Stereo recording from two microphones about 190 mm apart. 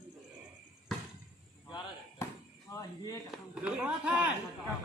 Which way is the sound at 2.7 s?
20° left (ahead or behind).